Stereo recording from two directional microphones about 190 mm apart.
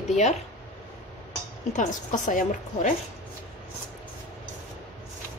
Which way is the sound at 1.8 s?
40° left (ahead or behind).